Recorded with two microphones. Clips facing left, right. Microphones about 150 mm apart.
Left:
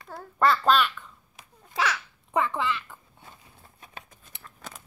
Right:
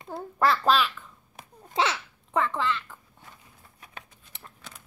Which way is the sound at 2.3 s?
5° left (ahead or behind).